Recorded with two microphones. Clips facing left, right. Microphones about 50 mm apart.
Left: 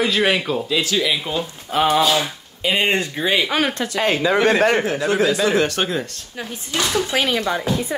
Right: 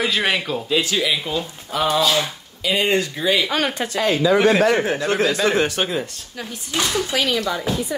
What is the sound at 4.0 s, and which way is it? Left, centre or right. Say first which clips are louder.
Speech: right 1 dB; left.